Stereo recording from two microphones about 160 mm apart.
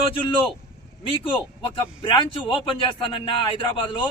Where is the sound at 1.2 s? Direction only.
30° left (ahead or behind).